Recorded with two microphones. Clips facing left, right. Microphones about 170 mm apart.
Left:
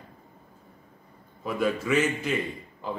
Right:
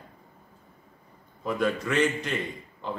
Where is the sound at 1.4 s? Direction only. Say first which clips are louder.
Even; 5° left (ahead or behind).